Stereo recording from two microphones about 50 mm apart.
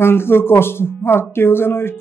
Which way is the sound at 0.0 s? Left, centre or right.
Left.